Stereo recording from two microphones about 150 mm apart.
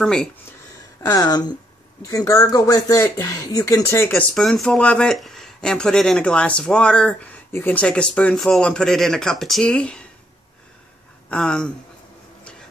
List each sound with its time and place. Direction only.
0.0 s speech: 5° left (ahead or behind)
1.0 s speech: 25° left (ahead or behind)
4.1 s speech: 5° left (ahead or behind)
11.2 s speech: 5° left (ahead or behind)